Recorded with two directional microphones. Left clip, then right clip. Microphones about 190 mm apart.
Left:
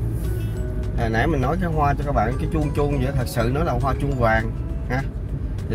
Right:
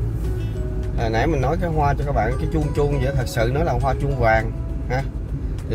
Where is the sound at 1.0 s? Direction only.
10° left (ahead or behind).